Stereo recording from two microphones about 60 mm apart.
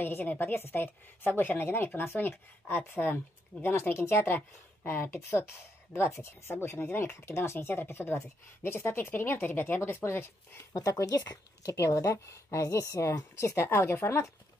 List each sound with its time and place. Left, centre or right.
0.0 s a woman's voice: left
3.9 s a woman's voice: left
9.8 s speech: left
10.7 s speech: left
11.9 s speech: left